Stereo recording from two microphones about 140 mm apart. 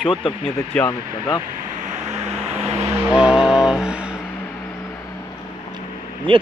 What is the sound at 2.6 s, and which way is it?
Vehicle, 50° right (ahead or behind).